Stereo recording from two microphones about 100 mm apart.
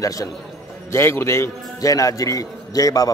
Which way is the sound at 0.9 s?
25° left (ahead or behind).